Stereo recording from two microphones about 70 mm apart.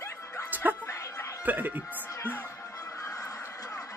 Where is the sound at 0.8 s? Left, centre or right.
Left.